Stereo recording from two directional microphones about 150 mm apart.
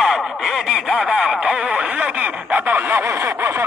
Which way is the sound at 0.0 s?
Centre (ahead or behind).